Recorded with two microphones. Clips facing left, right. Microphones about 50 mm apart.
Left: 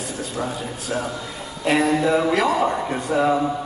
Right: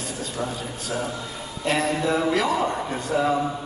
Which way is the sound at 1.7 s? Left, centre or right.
Centre.